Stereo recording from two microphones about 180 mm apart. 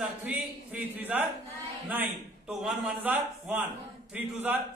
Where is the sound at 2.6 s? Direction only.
10° right (ahead or behind).